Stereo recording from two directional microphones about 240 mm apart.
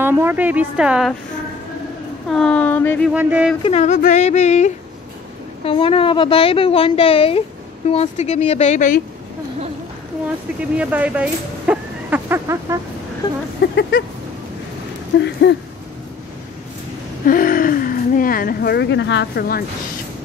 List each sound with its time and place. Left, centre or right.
0.0 s a woman's voice: centre
2.2 s speech: centre
3.1 s speech: centre
3.6 s a woman's voice: left
10.8 s speech: centre
13.6 s a sound: left
15.1 s speech: left
17.2 s a sound: left